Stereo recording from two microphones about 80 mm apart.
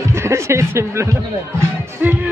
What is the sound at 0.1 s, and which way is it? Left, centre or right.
Speech, right.